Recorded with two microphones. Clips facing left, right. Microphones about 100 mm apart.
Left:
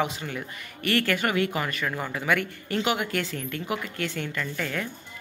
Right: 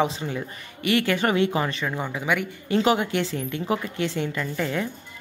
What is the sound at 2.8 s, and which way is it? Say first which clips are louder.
Speech: right 5 dB; 30° right (ahead or behind).